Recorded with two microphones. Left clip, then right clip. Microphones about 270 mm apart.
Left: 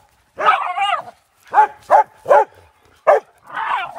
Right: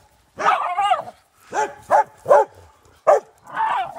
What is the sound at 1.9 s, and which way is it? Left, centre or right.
Dog, left.